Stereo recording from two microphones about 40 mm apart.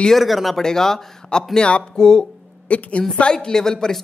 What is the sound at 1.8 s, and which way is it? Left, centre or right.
Speech, centre.